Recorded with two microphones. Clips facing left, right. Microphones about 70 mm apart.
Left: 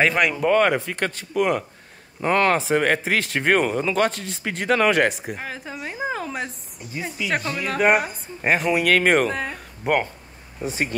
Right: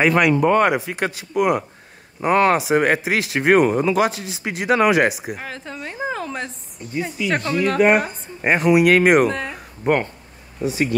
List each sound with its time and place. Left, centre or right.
0.0 s speech: centre
5.5 s a woman's voice: centre
9.3 s speech: centre
10.6 s speech: left